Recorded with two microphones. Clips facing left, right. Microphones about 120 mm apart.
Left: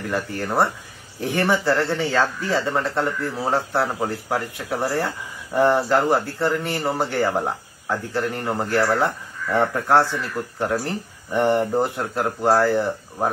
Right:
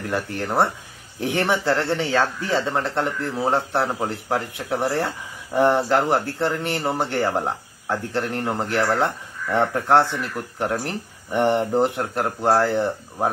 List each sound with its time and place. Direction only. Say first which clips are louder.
0.4 s speech: even; 20° right (ahead or behind)